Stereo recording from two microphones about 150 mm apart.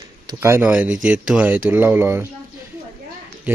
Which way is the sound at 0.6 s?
5° right (ahead or behind).